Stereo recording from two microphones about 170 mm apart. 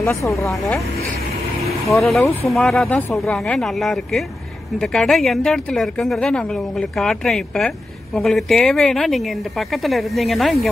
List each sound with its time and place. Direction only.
0.0 s speech: 15° left (ahead or behind)
1.9 s a woman's voice: centre (ahead or behind)